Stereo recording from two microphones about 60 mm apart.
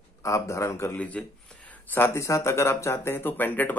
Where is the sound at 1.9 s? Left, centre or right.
Left.